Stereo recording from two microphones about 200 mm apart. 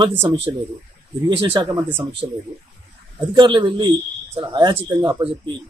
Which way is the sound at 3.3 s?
25° right (ahead or behind).